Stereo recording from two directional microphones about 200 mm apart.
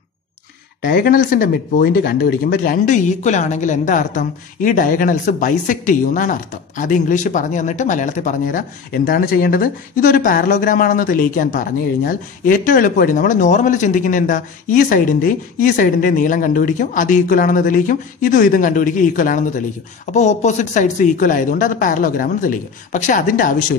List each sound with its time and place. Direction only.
0.8 s speech: 45° left (ahead or behind)